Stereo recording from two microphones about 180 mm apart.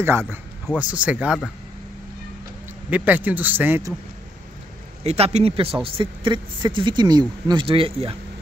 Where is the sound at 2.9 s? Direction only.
10° right (ahead or behind).